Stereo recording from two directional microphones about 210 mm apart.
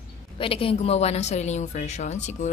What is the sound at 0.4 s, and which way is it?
A woman's voice, 25° left (ahead or behind).